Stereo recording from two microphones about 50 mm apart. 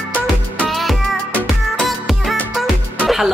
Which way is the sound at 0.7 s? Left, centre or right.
Centre.